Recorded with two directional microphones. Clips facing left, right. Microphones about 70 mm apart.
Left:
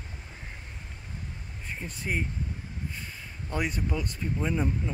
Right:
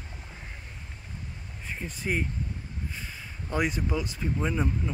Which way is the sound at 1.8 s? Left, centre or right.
Centre.